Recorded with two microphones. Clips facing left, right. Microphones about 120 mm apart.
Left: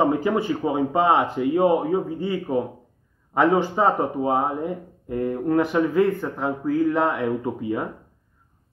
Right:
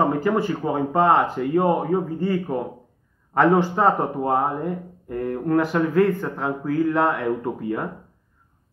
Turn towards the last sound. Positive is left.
turn(degrees=5)  # may be behind; listen again after turning